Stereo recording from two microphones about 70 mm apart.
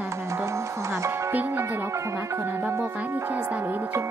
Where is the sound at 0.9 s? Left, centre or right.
Right.